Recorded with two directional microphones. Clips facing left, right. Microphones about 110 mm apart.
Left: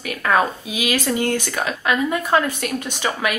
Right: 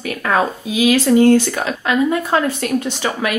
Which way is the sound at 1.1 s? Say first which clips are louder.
Right 10 dB; 10° right (ahead or behind).